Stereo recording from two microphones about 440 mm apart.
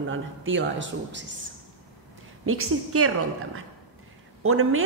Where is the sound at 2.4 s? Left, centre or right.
Right.